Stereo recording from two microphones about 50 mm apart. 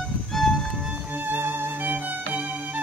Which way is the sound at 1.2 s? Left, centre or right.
Right.